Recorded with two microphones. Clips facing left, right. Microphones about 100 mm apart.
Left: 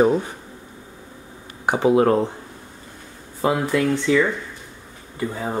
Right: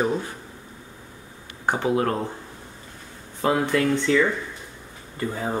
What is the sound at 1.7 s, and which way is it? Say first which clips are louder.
Speech: left 6 dB; 20° left (ahead or behind).